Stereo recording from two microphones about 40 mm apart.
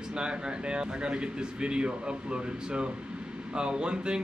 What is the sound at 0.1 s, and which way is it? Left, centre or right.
Speech, right.